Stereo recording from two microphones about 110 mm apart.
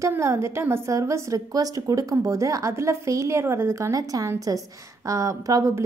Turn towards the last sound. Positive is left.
turn(degrees=-30)  # may be behind; listen again after turning